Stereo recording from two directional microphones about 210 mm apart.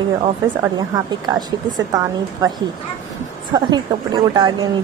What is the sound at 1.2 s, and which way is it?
A woman's voice, 20° right (ahead or behind).